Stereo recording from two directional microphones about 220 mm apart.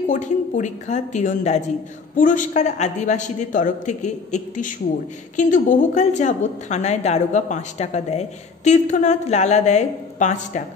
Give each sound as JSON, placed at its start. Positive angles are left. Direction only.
{"t": 0.1, "sound": "a woman's voice", "side_deg": 35}